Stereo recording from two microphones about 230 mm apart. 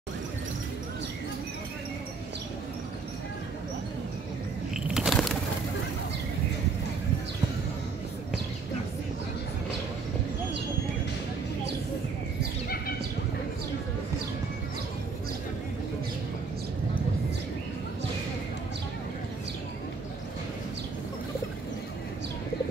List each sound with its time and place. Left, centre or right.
4.9 s bird: centre
12.6 s horse: left